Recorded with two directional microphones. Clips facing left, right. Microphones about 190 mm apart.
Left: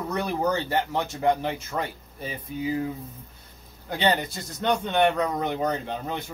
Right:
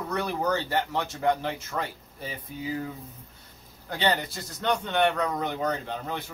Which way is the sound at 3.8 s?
15° left (ahead or behind).